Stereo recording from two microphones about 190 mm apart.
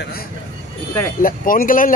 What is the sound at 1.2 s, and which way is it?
Speech, 45° left (ahead or behind).